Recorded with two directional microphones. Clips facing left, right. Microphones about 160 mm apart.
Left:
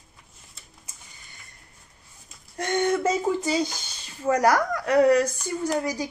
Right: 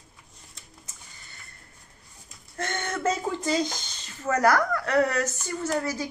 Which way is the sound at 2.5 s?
15° left (ahead or behind).